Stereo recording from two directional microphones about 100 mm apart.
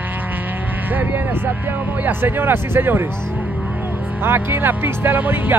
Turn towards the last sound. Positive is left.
turn(degrees=-20)  # may be behind; listen again after turning